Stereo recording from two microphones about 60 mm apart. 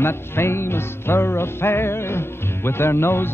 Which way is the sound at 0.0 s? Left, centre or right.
Left.